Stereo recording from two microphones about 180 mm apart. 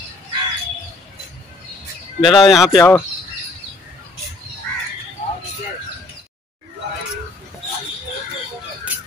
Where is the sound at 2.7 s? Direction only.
15° left (ahead or behind).